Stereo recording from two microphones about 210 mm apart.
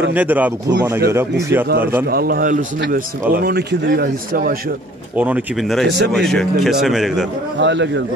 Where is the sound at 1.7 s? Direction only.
45° right (ahead or behind).